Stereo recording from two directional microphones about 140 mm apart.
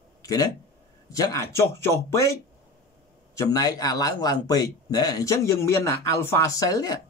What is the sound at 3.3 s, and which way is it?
A man's voice, 25° left (ahead or behind).